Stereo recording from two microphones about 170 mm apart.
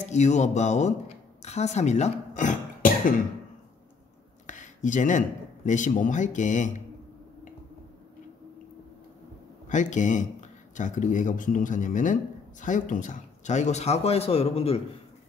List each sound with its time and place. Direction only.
0.0 s speech: 45° left (ahead or behind)
4.5 s a sound: 45° left (ahead or behind)
5.7 s speech: 50° left (ahead or behind)
9.7 s speech: 45° left (ahead or behind)